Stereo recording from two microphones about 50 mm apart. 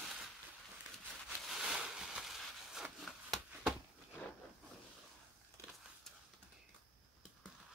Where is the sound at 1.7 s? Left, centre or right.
Centre.